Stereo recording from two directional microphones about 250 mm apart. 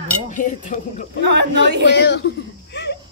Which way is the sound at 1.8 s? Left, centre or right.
Left.